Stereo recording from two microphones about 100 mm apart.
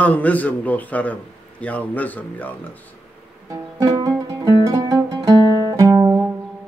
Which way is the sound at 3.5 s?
35° right (ahead or behind).